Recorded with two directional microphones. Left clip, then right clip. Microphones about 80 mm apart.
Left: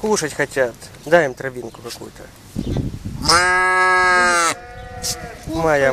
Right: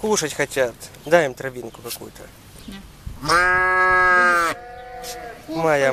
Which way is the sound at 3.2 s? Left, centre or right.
Centre.